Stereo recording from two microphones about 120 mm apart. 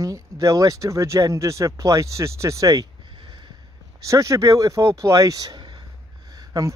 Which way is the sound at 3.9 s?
25° right (ahead or behind).